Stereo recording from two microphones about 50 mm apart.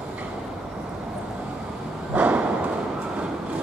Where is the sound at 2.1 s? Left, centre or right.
Right.